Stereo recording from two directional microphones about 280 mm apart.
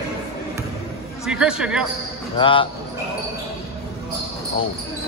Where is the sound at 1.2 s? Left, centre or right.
Centre.